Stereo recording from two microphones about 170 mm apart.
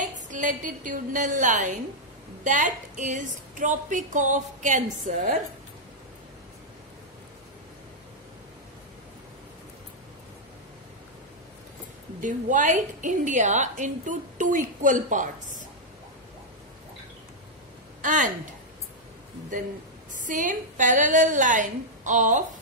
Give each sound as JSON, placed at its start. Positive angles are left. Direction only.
{"t": 0.0, "sound": "a woman's voice", "side_deg": -50}
{"t": 12.2, "sound": "a woman's voice", "side_deg": -50}
{"t": 18.0, "sound": "a woman's voice", "side_deg": -50}
{"t": 20.1, "sound": "a woman's voice", "side_deg": -50}